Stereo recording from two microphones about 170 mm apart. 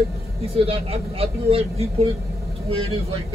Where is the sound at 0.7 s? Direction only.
35° right (ahead or behind).